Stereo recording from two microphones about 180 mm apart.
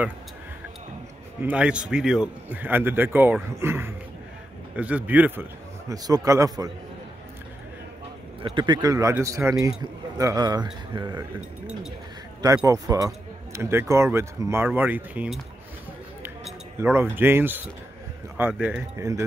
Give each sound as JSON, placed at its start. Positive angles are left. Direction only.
{"t": 1.4, "sound": "speech", "side_deg": -5}
{"t": 8.4, "sound": "speech", "side_deg": -25}
{"t": 12.6, "sound": "speech", "side_deg": -20}
{"t": 16.8, "sound": "speech", "side_deg": -10}